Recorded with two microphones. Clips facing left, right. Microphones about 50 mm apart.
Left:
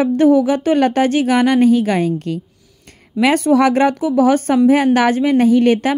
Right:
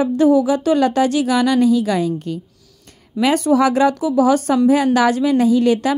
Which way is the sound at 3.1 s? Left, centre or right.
Left.